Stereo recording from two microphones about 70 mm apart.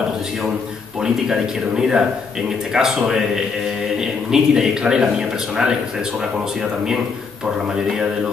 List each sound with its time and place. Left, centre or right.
1.0 s speech: centre
4.3 s speech: centre